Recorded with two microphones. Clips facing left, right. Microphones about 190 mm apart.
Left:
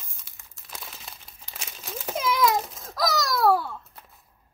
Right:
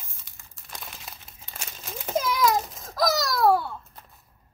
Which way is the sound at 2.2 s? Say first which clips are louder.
Left 2 dB; centre (ahead or behind).